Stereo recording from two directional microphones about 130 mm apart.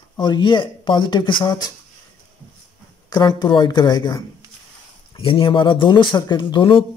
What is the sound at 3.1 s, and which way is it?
Speech, 35° left (ahead or behind).